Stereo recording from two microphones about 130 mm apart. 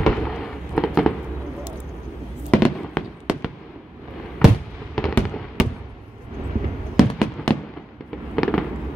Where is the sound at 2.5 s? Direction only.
10° left (ahead or behind).